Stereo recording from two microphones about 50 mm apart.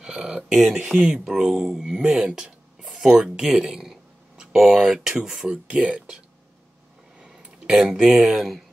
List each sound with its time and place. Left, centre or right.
0.0 s a sound: centre
0.7 s speech: centre
5.5 s speech: right
7.2 s speech: centre